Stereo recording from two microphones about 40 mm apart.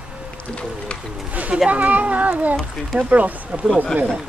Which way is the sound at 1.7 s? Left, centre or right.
Right.